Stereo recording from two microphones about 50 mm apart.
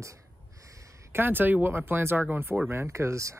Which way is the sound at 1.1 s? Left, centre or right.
Right.